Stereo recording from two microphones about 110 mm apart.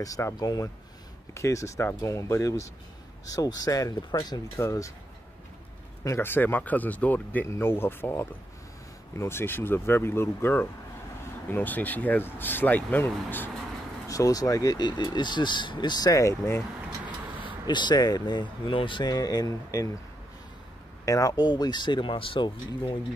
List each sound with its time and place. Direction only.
0.0 s speech: 30° left (ahead or behind)
6.0 s speech: 25° left (ahead or behind)
14.0 s speech: 30° left (ahead or behind)
17.6 s speech: 40° left (ahead or behind)
19.1 s speech: 35° left (ahead or behind)
21.0 s speech: 30° left (ahead or behind); by 22.5 s 50° left (ahead or behind)